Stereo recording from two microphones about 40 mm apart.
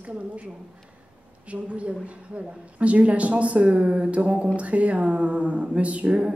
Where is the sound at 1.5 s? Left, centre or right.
Right.